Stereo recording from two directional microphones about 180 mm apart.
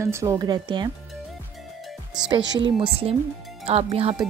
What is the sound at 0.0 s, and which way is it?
Speech, 15° right (ahead or behind).